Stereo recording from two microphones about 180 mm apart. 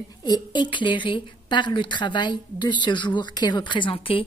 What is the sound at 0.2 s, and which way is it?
A woman's voice, 25° left (ahead or behind).